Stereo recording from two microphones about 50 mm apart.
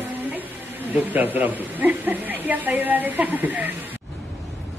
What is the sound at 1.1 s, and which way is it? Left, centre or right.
Speech, right.